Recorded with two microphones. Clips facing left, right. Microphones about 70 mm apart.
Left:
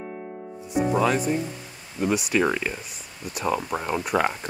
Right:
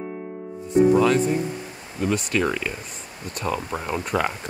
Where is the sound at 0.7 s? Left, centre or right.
Centre.